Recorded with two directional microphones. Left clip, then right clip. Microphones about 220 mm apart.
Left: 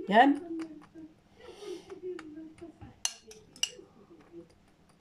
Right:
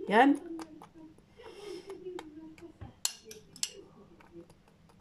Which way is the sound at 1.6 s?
5° right (ahead or behind).